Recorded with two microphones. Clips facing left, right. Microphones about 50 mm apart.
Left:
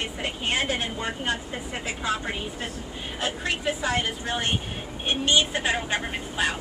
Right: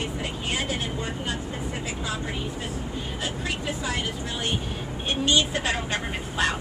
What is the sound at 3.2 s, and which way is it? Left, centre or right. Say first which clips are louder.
Speech: left 4 dB; left.